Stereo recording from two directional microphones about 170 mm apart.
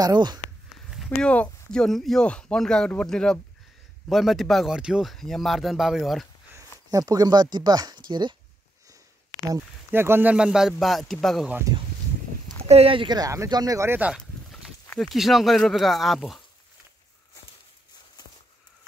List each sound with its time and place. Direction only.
0.0 s speech: 25° right (ahead or behind)
0.8 s speech: centre (ahead or behind)
6.5 s speech: 20° right (ahead or behind)
9.8 s speech: 15° right (ahead or behind)
12.6 s speech: 35° right (ahead or behind); by 16.4 s centre (ahead or behind)